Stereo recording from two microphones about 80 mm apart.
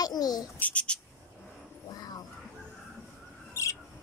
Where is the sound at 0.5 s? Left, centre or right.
Centre.